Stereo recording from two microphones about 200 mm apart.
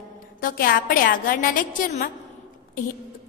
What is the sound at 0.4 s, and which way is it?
A woman's voice, 45° left (ahead or behind).